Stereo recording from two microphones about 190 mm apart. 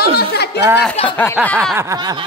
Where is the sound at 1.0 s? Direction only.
10° left (ahead or behind).